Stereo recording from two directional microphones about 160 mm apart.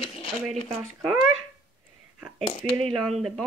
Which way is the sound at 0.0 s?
35° left (ahead or behind).